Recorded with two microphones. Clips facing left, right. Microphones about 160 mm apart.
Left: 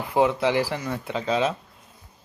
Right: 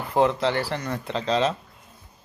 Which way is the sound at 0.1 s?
5° left (ahead or behind).